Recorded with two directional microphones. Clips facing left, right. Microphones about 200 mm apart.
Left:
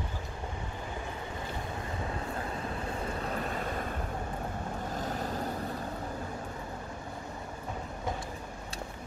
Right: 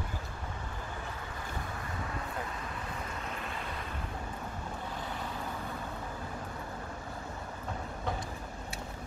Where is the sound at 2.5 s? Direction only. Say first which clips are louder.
Left 5 dB; 30° left (ahead or behind).